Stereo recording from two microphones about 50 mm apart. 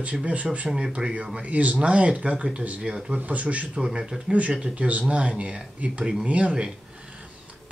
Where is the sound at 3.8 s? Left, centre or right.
Centre.